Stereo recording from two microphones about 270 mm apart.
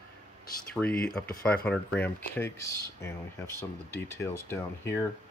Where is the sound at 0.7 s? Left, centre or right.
Centre.